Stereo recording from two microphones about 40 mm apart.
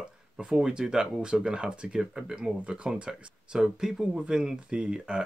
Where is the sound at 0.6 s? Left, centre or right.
Centre.